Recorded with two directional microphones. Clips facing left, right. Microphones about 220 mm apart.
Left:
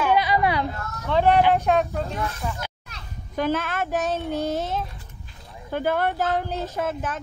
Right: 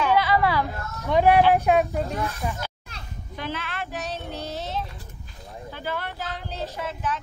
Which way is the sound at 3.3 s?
45° left (ahead or behind).